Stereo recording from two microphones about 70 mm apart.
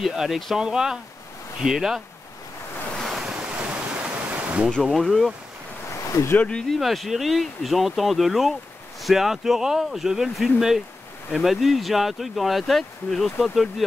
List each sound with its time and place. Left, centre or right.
0.0 s speech: centre
2.9 s waves: centre
3.7 s pink noise: centre
4.8 s speech: centre
6.3 s speech: centre
6.7 s speech: centre